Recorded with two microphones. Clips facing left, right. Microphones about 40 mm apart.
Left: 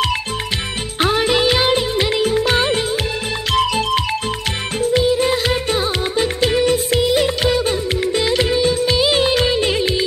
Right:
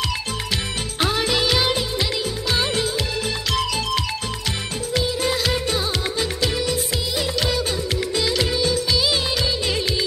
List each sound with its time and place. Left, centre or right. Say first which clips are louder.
0.9 s music: left 6 dB; left
2.6 s music of bollywood: left 4 dB; left
3.5 s music: left 8 dB; left
7.2 s music: left 6 dB; left
9.7 s music: left 5 dB; left